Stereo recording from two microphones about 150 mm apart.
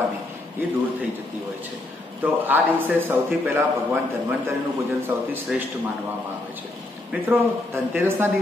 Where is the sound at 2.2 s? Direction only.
10° right (ahead or behind).